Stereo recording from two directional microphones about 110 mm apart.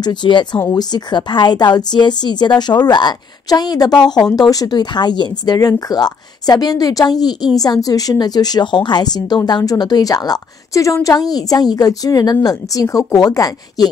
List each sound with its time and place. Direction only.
0.0 s speech: 45° left (ahead or behind)